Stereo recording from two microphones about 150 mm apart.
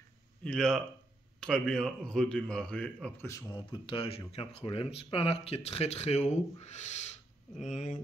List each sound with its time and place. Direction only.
0.4 s a man's voice: 5° left (ahead or behind)
3.3 s speech: 25° left (ahead or behind); by 8.0 s 55° left (ahead or behind)